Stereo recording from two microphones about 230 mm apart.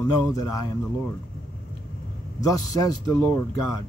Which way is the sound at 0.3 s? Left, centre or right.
Centre.